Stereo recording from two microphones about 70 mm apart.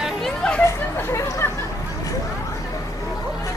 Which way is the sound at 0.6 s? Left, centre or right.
Left.